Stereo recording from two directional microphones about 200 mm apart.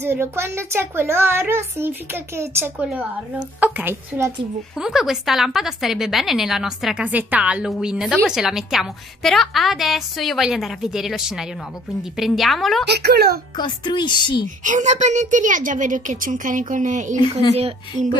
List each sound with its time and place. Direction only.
0.0 s a woman's voice: 10° right (ahead or behind)
12.8 s a child's voice: 55° right (ahead or behind)
13.6 s a woman's voice: 20° left (ahead or behind)
14.6 s a woman's voice: 40° right (ahead or behind)